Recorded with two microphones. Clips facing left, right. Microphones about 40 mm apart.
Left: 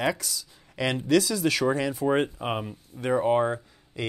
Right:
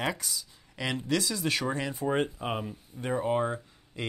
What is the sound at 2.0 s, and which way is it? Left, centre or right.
Speech, centre.